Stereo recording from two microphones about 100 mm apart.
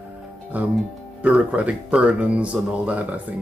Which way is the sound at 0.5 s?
15° right (ahead or behind).